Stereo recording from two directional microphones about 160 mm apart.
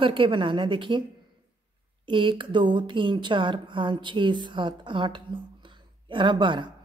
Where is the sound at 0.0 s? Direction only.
30° right (ahead or behind).